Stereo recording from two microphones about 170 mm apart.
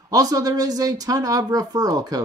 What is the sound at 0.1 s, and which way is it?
Speech, 20° right (ahead or behind).